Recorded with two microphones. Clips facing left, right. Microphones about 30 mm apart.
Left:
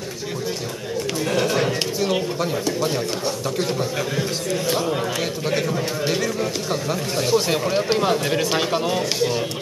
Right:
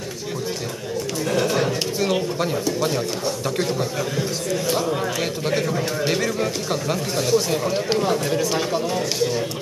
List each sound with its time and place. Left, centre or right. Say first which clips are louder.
1.2 s a sound: even; centre
4.2 s a man's voice: even; centre
5.7 s speech: right 1 dB; centre
7.3 s speech: left 1 dB; left
7.6 s a man's voice: left 1 dB; centre
8.0 s speech: left 1 dB; left